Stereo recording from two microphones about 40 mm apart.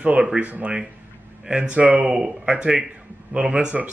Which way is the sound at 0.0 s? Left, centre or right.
Right.